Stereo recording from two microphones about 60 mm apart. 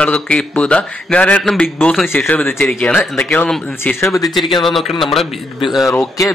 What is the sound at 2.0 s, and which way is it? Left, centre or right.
Speech, left.